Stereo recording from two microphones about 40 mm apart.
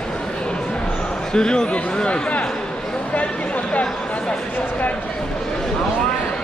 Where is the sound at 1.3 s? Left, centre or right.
Left.